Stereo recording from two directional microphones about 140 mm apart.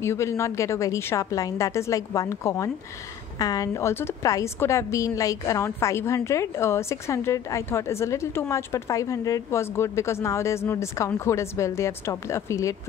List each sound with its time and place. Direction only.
0.0 s a woman's voice: 20° left (ahead or behind)